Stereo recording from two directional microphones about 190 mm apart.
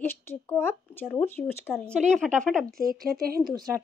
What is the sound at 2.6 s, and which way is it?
Speech, 50° right (ahead or behind).